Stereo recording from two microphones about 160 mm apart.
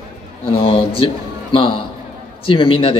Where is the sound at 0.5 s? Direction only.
35° left (ahead or behind).